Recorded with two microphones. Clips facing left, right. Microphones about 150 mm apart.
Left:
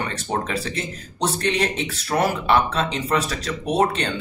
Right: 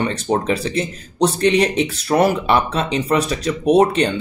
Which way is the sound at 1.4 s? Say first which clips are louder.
Right 8 dB; 15° right (ahead or behind).